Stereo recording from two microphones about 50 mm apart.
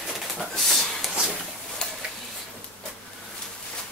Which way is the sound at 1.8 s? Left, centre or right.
Centre.